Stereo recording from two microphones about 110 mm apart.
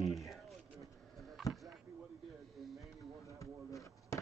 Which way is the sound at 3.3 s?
30° left (ahead or behind).